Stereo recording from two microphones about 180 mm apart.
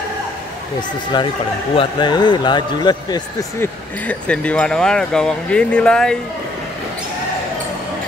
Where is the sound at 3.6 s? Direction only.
5° left (ahead or behind).